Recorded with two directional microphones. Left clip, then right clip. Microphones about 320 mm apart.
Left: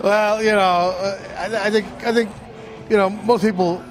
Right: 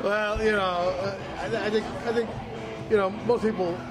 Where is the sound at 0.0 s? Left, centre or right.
Left.